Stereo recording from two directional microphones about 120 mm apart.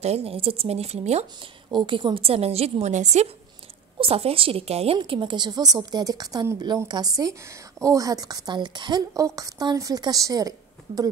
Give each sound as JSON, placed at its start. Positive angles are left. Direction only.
{"t": 0.0, "sound": "a woman's voice", "side_deg": -60}
{"t": 1.7, "sound": "a woman's voice", "side_deg": -40}
{"t": 4.0, "sound": "a woman's voice", "side_deg": -55}
{"t": 4.9, "sound": "a woman's voice", "side_deg": -45}